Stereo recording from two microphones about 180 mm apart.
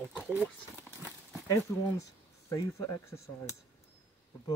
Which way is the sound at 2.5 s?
15° left (ahead or behind).